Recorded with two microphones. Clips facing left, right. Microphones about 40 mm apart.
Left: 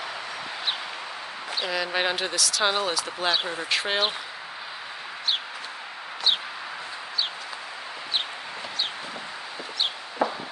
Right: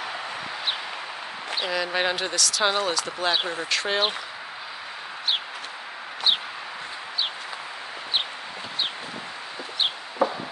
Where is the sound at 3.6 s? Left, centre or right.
Centre.